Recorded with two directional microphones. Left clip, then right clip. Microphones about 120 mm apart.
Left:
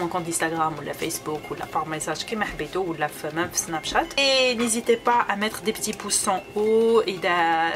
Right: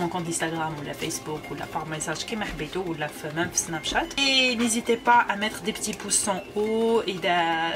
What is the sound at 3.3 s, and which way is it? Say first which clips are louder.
Speech: left 1 dB; 25° left (ahead or behind).